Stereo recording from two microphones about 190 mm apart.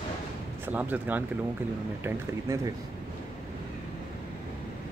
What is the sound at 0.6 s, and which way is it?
Speech, 10° right (ahead or behind).